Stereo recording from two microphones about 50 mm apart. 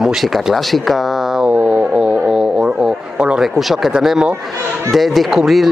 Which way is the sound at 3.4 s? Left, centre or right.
Centre.